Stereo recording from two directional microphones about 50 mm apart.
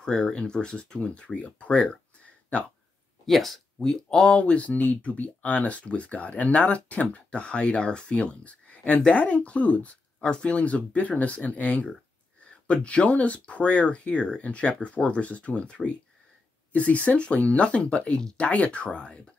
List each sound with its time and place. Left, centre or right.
0.0 s speech: centre
3.3 s speech: centre
4.4 s speech: left